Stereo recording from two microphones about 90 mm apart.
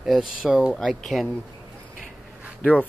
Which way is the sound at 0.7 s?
5° left (ahead or behind).